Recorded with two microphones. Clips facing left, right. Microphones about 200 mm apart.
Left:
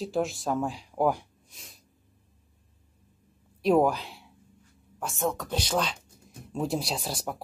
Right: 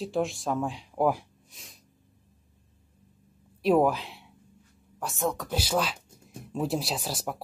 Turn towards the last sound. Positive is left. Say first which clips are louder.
# even
turn(degrees=0)  # may be behind; listen again after turning